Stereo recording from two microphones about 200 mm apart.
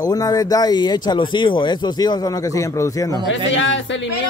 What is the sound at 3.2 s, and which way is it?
Speech, 70° left (ahead or behind).